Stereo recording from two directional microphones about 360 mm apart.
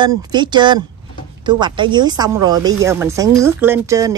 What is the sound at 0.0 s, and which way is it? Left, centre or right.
Speech, centre.